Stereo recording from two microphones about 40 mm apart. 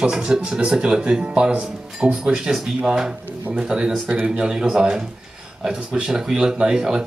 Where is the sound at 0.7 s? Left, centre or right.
Right.